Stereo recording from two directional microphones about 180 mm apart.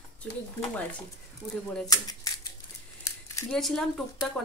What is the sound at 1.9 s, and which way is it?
Speech, 20° left (ahead or behind).